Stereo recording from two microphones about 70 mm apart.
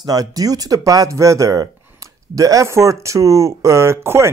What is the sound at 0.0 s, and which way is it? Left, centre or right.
A man's voice, right.